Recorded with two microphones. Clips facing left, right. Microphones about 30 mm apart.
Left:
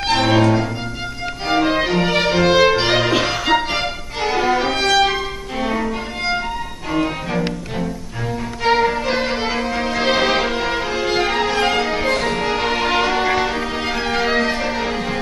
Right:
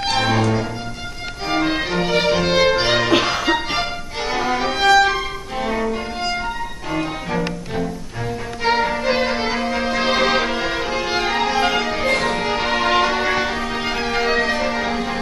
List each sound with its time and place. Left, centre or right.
0.1 s music: centre
3.1 s music: centre
3.7 s violin: centre
5.0 s music: centre
8.6 s violin: centre
9.2 s music: centre